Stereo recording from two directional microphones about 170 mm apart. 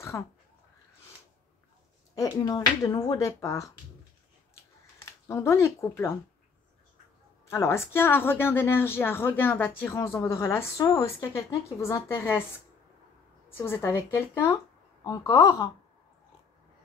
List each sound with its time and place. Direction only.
0.1 s speech: 20° left (ahead or behind)
2.1 s speech: 20° left (ahead or behind)
5.3 s speech: 15° left (ahead or behind)
7.4 s speech: 15° left (ahead or behind)
13.5 s speech: 15° left (ahead or behind)